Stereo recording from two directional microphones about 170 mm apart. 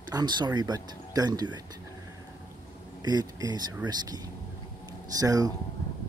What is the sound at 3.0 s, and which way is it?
Speech, 25° right (ahead or behind).